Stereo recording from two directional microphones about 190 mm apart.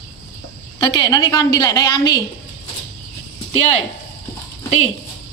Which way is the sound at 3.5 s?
35° left (ahead or behind).